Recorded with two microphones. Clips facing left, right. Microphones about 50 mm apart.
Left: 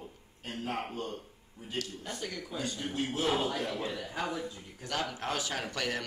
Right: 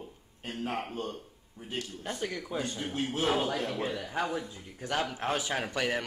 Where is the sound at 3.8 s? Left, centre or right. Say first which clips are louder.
Right 3 dB; right.